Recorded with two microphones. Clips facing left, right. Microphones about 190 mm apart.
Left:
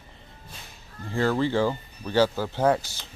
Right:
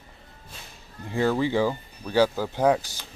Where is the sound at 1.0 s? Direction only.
15° right (ahead or behind).